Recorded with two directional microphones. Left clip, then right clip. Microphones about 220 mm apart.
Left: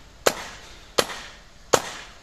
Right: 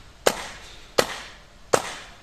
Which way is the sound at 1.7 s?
40° left (ahead or behind).